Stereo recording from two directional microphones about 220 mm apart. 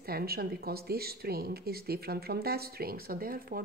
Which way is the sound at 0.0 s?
45° right (ahead or behind).